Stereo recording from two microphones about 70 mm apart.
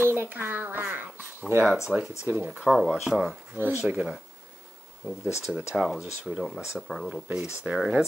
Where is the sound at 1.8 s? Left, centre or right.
Centre.